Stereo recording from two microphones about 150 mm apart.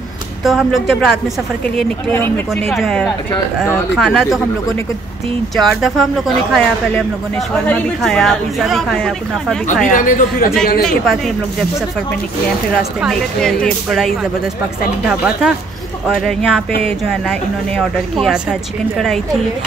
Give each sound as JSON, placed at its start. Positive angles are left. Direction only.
{"t": 0.4, "sound": "speech", "side_deg": 0}
{"t": 1.8, "sound": "speech", "side_deg": 10}
{"t": 2.7, "sound": "speech", "side_deg": 5}
{"t": 5.6, "sound": "speech", "side_deg": 0}
{"t": 9.8, "sound": "speech", "side_deg": 65}
{"t": 10.8, "sound": "speech", "side_deg": 0}
{"t": 13.0, "sound": "speech", "side_deg": 5}